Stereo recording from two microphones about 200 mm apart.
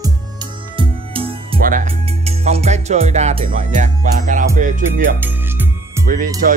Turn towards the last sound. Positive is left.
turn(degrees=-40)  # may be behind; listen again after turning